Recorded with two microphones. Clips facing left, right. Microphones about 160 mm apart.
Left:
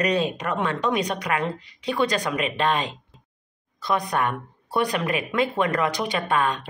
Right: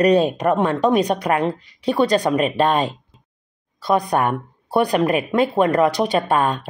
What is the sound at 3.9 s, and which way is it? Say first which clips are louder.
Speech: right 6 dB; 35° right (ahead or behind).